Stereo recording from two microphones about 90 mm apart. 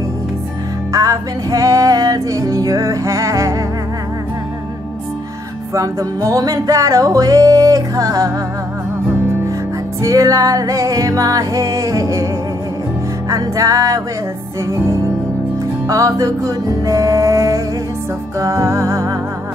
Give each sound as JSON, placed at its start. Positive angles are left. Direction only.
{"t": 0.9, "sound": "music", "side_deg": -40}
{"t": 5.7, "sound": "music", "side_deg": -35}
{"t": 10.0, "sound": "music", "side_deg": -35}
{"t": 13.3, "sound": "music", "side_deg": -40}